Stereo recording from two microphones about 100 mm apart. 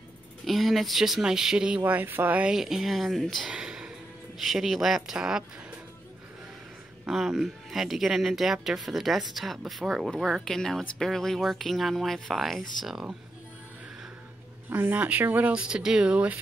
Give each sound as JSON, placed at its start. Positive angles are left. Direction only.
{"t": 0.5, "sound": "speech", "side_deg": 0}
{"t": 1.9, "sound": "speech", "side_deg": -20}
{"t": 3.4, "sound": "a sound", "side_deg": -5}
{"t": 4.4, "sound": "speech", "side_deg": 0}
{"t": 7.1, "sound": "speech", "side_deg": -5}
{"t": 14.7, "sound": "speech", "side_deg": -20}